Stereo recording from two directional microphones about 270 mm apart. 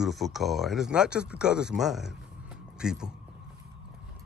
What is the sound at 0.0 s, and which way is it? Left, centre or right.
Speech, centre.